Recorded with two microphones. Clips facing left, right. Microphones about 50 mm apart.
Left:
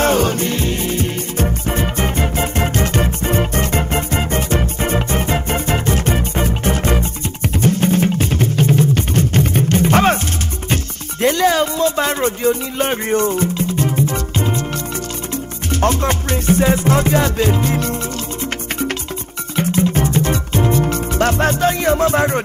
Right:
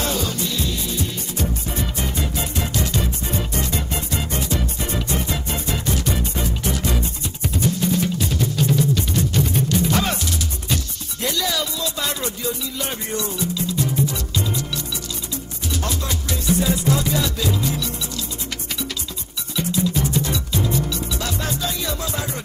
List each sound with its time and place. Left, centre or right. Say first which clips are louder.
0.0 s music: left 9 dB; left
19.5 s music: left 5 dB; left